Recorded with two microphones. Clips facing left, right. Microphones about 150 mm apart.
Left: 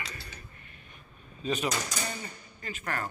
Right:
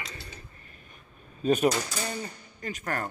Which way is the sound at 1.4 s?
50° right (ahead or behind).